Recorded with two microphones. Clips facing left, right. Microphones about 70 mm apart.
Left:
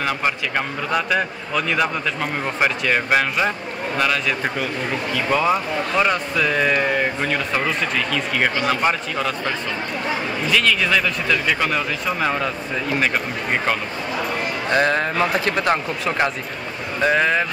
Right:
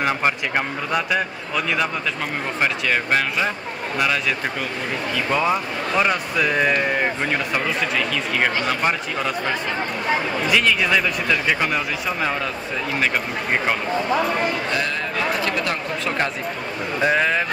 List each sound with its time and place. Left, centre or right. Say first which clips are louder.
0.9 s speech: left 1 dB; centre
4.0 s speech: left 1 dB; centre
10.5 s speech: even; centre
14.7 s speech: left 5 dB; left
17.0 s speech: left 2 dB; centre